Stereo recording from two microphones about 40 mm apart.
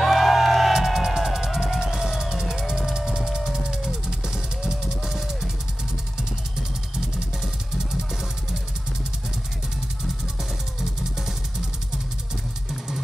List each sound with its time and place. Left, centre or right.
0.0 s music: centre
0.7 s music: centre